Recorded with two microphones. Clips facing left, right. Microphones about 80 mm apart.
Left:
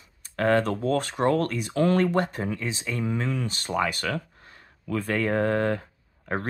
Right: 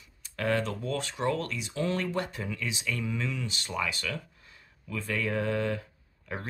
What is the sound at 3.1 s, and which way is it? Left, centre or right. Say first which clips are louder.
Speech: left 5 dB; left.